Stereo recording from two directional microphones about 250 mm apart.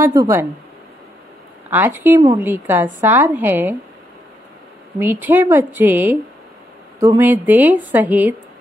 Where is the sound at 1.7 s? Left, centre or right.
Centre.